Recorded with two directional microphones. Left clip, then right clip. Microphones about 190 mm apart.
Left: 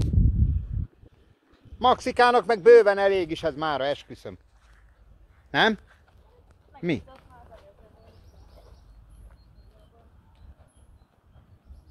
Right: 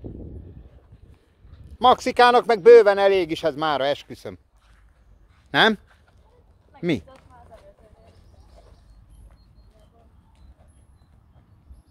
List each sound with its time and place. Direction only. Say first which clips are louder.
1.8 s speech: right 4 dB; 25° right (ahead or behind)
5.5 s speech: right 4 dB; 25° right (ahead or behind)
6.8 s speech: right 4 dB; 20° right (ahead or behind)
7.1 s a sound: right 2 dB; centre (ahead or behind)